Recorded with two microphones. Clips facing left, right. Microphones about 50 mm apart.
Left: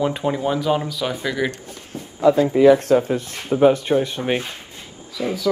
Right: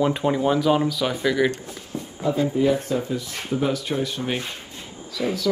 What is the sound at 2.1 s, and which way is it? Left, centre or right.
Speech, left.